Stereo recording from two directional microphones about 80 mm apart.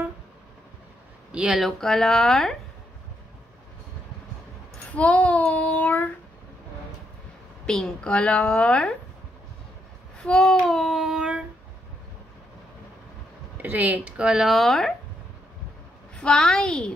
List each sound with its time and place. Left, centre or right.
1.3 s speech: centre
1.6 s child singing: centre
4.9 s a woman's voice: centre
7.6 s a woman's voice: centre
10.2 s child singing: centre
13.6 s speech: right
14.5 s child singing: centre
16.2 s a woman's voice: centre